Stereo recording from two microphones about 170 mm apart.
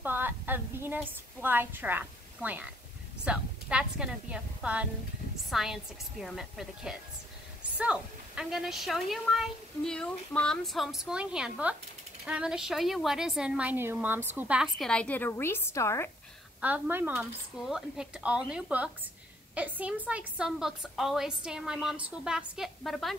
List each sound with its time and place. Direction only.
0.0 s a sound: 10° right (ahead or behind)
3.3 s a woman's voice: 5° right (ahead or behind); by 16.1 s 15° left (ahead or behind)
16.6 s a woman's voice: 10° right (ahead or behind)